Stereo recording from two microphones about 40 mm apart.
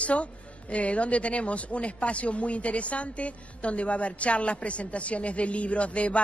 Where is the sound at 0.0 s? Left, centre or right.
Left.